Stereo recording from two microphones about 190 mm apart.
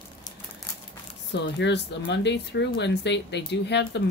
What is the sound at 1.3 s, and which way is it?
A woman's voice, 65° left (ahead or behind).